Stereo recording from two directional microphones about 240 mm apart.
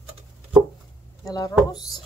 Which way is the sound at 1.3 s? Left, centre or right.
Centre.